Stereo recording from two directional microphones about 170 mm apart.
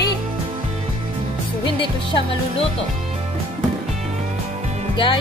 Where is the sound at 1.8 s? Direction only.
30° left (ahead or behind).